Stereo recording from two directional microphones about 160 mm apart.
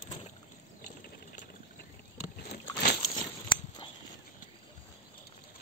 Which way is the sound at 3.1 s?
30° left (ahead or behind).